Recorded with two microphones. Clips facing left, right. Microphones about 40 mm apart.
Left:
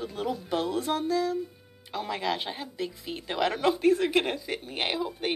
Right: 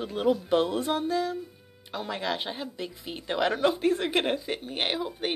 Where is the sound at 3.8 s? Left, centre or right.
Right.